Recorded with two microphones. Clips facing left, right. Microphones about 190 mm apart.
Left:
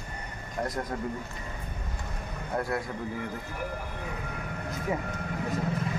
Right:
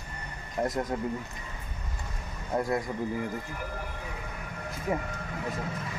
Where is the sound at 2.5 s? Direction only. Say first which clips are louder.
Right 2 dB; 15° right (ahead or behind).